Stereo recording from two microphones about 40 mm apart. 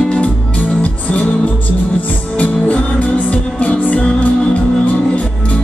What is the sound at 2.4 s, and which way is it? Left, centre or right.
Music, left.